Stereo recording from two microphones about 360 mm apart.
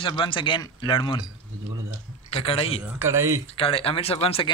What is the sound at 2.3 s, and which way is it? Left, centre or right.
Speech, centre.